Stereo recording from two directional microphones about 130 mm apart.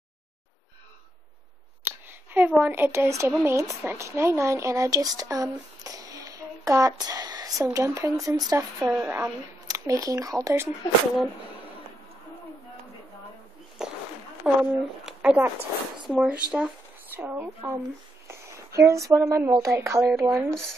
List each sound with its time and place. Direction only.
2.0 s a woman's voice: 15° right (ahead or behind)
8.7 s speech: 10° right (ahead or behind)
13.8 s a sound: 5° right (ahead or behind)
14.4 s speech: 10° right (ahead or behind)